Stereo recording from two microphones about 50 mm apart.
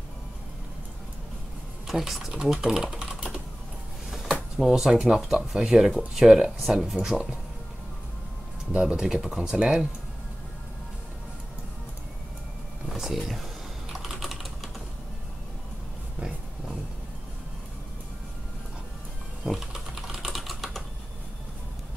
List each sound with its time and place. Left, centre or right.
1.9 s speech: centre
3.0 s typing: centre
4.6 s speech: centre
8.7 s speech: centre
12.9 s typing: centre
19.4 s typing: centre